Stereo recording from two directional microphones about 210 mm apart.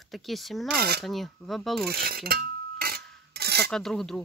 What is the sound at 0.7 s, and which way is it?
Speech, 45° right (ahead or behind).